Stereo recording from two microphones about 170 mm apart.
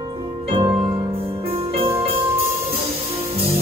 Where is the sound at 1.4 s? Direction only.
35° right (ahead or behind).